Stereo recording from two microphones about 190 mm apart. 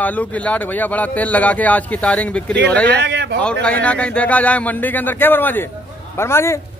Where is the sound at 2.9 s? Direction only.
60° right (ahead or behind).